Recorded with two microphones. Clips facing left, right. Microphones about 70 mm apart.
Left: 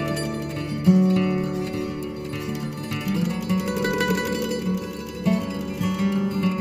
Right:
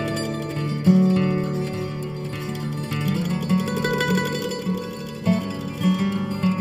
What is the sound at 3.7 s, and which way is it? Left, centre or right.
Music, centre.